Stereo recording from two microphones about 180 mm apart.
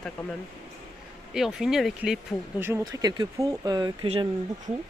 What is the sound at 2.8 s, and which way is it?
Speech, 20° right (ahead or behind).